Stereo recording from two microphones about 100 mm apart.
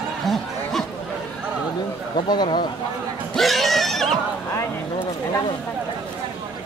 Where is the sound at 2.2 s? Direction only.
50° left (ahead or behind).